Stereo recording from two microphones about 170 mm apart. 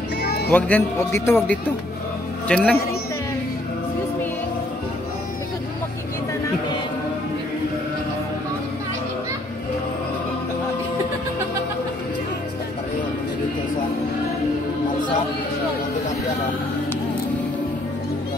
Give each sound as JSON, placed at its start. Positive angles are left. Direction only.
{"t": 0.2, "sound": "music", "side_deg": 75}
{"t": 0.5, "sound": "a man's voice", "side_deg": 10}